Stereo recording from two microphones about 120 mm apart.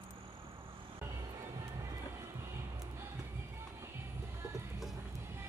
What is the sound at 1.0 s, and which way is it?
Music, 20° right (ahead or behind).